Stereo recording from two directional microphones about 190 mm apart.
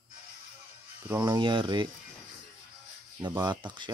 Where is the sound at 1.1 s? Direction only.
20° right (ahead or behind).